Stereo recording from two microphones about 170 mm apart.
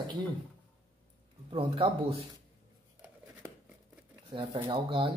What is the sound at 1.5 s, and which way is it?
Speech, 30° right (ahead or behind).